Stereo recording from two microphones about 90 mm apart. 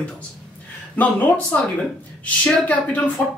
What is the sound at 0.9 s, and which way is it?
Speech, 15° left (ahead or behind).